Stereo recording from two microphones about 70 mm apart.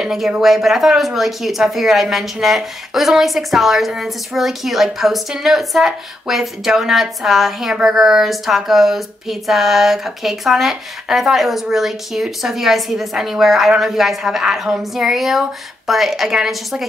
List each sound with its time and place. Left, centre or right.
0.0 s a woman's voice: centre